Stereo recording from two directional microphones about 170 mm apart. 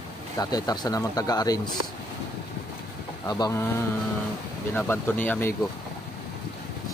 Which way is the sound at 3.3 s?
20° left (ahead or behind).